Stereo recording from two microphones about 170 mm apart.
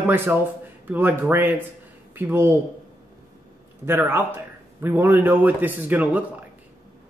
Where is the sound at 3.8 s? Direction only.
15° right (ahead or behind).